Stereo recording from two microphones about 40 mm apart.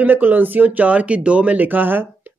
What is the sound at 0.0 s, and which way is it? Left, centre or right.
Speech, right.